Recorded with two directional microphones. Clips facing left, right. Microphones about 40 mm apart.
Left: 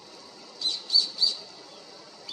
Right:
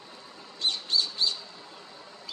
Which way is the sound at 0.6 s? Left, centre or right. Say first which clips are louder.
Even; right.